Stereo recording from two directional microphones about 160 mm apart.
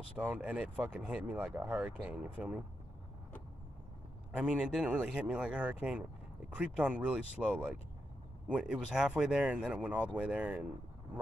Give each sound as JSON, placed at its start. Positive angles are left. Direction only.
{"t": 0.2, "sound": "speech", "side_deg": -10}
{"t": 4.4, "sound": "speech", "side_deg": -5}